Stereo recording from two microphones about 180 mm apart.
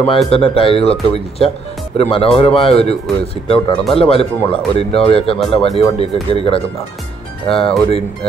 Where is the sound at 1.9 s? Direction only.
30° left (ahead or behind).